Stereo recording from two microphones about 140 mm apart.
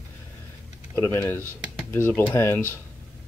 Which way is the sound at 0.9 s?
15° left (ahead or behind).